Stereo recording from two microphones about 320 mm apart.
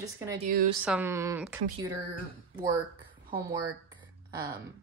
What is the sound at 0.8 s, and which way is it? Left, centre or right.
Speech, centre.